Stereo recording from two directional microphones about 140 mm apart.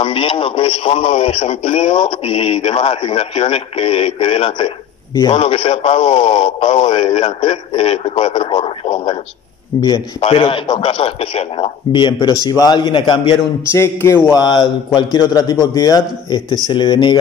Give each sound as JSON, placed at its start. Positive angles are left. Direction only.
{"t": 0.0, "sound": "a man's voice", "side_deg": 40}
{"t": 13.7, "sound": "a man's voice", "side_deg": 20}
{"t": 14.4, "sound": "a man's voice", "side_deg": 30}